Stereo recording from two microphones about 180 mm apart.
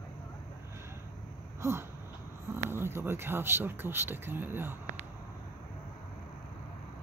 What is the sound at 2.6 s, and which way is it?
Speech, 15° right (ahead or behind).